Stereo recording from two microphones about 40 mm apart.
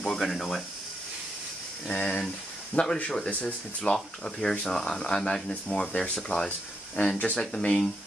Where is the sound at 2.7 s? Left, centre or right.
Left.